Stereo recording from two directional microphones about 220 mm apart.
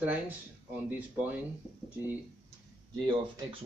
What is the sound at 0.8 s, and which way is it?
Speech, 10° right (ahead or behind).